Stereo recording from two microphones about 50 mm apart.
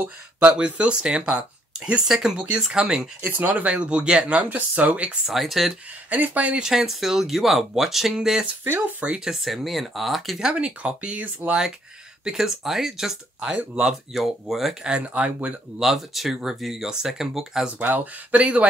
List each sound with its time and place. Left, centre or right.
0.4 s speech: right
3.3 s speech: right
3.6 s speech: right
5.2 s speech: centre
6.0 s speech: right
6.5 s speech: centre
10.4 s speech: centre
12.3 s speech: centre
14.8 s speech: right
15.8 s speech: centre
17.7 s speech: right